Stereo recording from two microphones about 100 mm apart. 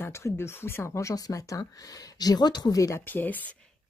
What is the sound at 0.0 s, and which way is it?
Speech, 25° left (ahead or behind).